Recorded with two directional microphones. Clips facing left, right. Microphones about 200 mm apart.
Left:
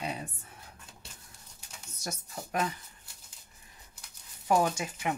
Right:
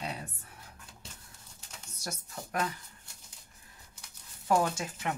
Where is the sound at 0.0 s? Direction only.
15° left (ahead or behind).